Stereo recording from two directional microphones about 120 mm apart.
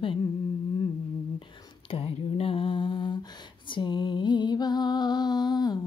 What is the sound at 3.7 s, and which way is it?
Music, 40° left (ahead or behind).